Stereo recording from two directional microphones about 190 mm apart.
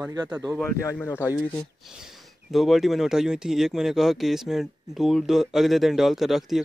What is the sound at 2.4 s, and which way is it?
Speech, centre (ahead or behind).